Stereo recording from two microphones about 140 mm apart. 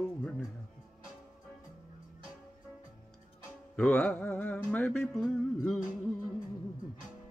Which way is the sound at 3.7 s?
10° left (ahead or behind).